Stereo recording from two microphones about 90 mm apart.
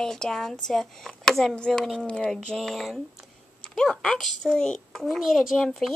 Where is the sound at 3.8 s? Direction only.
5° left (ahead or behind).